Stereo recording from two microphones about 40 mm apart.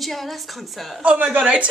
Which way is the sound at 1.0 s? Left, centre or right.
Right.